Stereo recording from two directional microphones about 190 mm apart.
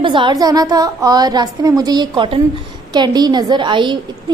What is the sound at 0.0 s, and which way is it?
A woman's voice, 25° right (ahead or behind).